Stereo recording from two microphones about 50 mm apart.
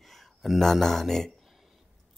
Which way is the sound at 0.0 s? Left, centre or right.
Centre.